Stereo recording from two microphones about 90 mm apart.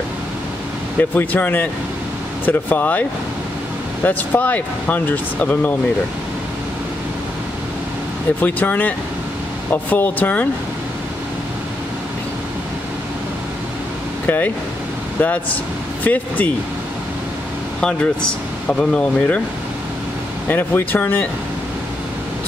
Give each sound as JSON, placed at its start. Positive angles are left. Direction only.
{"t": 1.1, "sound": "speech", "side_deg": 20}
{"t": 8.4, "sound": "speech", "side_deg": 20}
{"t": 14.2, "sound": "speech", "side_deg": 20}
{"t": 17.7, "sound": "speech", "side_deg": 10}
{"t": 20.4, "sound": "speech", "side_deg": 20}